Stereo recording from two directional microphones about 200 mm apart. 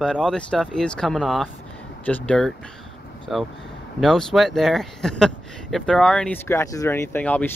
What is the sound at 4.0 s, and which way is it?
Speech, centre (ahead or behind).